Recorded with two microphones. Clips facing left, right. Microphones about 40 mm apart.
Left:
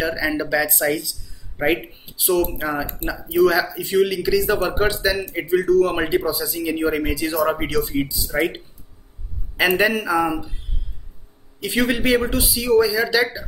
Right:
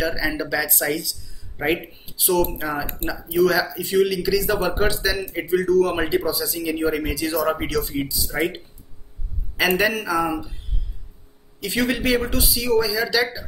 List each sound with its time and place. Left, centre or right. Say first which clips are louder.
0.0 s speech: left 2 dB; centre
9.6 s a man's voice: left 2 dB; centre
11.6 s speech: left 2 dB; centre